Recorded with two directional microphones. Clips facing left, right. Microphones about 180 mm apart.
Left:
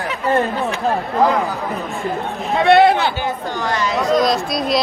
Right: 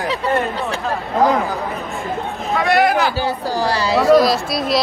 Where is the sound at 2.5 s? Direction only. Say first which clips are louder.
Left 4 dB; 25° left (ahead or behind).